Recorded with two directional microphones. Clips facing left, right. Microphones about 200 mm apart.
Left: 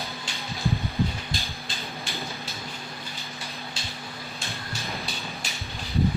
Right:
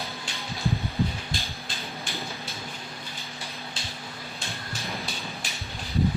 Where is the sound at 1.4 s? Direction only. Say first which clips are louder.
Left 1 dB; centre (ahead or behind).